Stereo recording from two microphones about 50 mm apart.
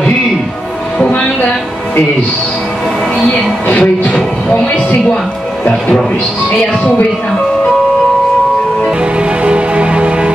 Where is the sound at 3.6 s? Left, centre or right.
Left.